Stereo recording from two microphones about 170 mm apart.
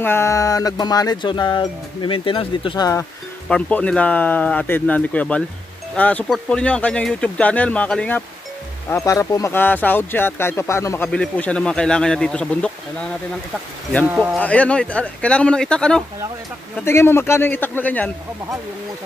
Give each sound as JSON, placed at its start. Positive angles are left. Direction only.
{"t": 0.0, "sound": "speech", "side_deg": 15}
{"t": 3.4, "sound": "speech", "side_deg": 5}
{"t": 8.8, "sound": "speech", "side_deg": 15}
{"t": 14.0, "sound": "speech", "side_deg": -5}
{"t": 14.4, "sound": "speech", "side_deg": 10}